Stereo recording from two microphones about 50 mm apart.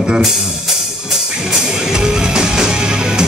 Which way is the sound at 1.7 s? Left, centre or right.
Centre.